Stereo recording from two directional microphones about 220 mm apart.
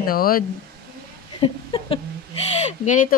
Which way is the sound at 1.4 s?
20° left (ahead or behind).